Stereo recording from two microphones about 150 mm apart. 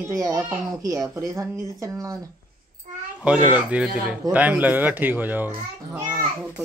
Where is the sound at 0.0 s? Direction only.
25° right (ahead or behind).